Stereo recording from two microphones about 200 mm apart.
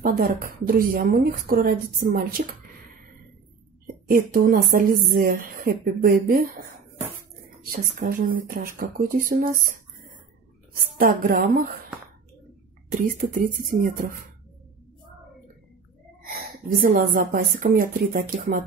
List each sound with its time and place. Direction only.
0.0 s a woman's voice: 45° right (ahead or behind)
3.8 s a woman's voice: 45° right (ahead or behind)
7.7 s a woman's voice: 45° right (ahead or behind)
10.7 s a woman's voice: 45° right (ahead or behind)
12.9 s a woman's voice: 45° right (ahead or behind)
16.3 s a woman's voice: 45° right (ahead or behind)